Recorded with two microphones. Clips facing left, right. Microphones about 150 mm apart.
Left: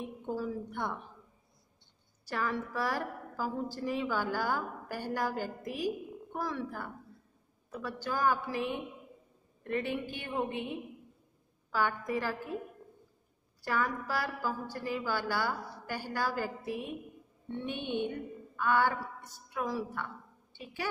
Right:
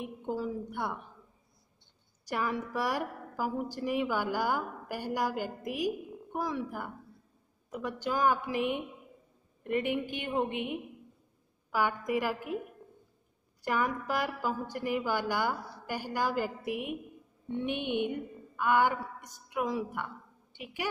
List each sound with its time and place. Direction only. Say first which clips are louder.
0.0 s a woman's voice: right 1 dB; 15° right (ahead or behind)
2.2 s a woman's voice: right 1 dB; 15° right (ahead or behind)
13.6 s a woman's voice: right 2 dB; 20° right (ahead or behind)